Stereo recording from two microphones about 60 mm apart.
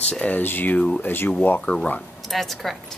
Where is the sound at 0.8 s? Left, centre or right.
Centre.